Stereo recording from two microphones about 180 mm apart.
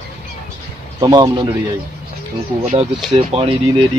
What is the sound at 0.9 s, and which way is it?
Speech, 20° right (ahead or behind).